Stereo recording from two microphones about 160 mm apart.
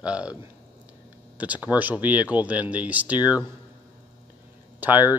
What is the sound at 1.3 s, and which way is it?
Speech, 10° right (ahead or behind).